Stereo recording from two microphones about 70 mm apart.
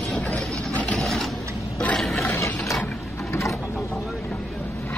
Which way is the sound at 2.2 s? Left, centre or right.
Left.